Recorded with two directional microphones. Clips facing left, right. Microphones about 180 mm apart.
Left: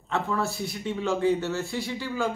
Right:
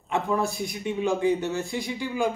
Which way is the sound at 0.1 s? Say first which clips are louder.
Right 2 dB; 15° right (ahead or behind).